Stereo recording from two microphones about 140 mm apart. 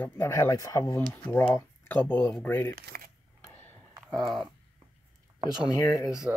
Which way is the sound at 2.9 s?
90° right.